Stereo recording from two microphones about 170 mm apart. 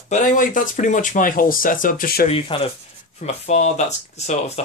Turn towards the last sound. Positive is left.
turn(degrees=40)  # may be behind; listen again after turning